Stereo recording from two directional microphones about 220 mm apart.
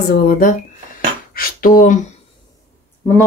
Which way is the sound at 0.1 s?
40° left (ahead or behind).